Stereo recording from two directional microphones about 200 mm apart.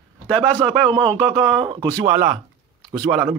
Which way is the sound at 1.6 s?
25° right (ahead or behind).